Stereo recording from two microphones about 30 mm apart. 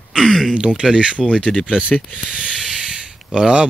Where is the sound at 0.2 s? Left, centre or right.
Centre.